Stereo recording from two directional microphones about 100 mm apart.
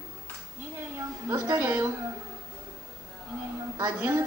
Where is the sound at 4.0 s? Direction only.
20° right (ahead or behind).